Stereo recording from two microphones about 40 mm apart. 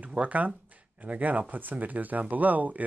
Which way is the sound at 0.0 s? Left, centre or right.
Right.